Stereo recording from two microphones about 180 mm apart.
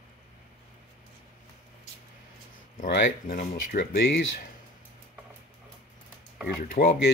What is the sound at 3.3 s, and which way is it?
Speech, 45° left (ahead or behind).